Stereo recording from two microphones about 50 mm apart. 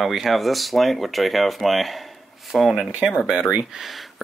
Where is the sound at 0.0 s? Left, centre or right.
Centre.